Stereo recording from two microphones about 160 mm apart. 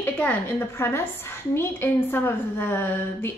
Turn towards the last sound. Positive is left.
turn(degrees=15)  # may be behind; listen again after turning